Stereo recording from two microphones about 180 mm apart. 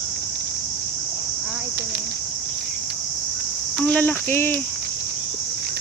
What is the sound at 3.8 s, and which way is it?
Cricket, 10° left (ahead or behind).